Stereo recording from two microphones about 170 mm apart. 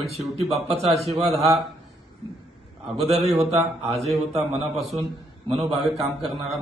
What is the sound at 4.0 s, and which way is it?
A man's voice, centre (ahead or behind).